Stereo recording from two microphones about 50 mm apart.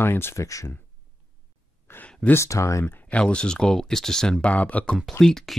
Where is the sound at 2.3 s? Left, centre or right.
Left.